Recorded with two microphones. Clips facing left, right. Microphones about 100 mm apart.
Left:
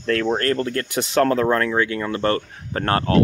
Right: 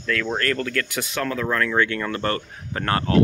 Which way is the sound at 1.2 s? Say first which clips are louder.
Left 7 dB; 45° left (ahead or behind).